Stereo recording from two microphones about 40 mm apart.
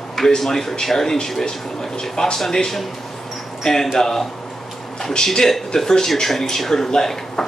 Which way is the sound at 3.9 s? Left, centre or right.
Centre.